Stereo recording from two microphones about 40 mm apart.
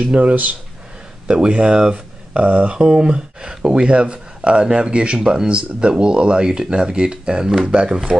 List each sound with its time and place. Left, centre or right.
0.1 s speech: right
2.3 s speech: right
5.2 s speech: centre
5.5 s speech: right
8.1 s speech: centre